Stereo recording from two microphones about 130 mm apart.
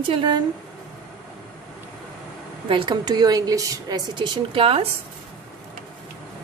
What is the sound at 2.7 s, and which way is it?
A woman's voice, 40° right (ahead or behind).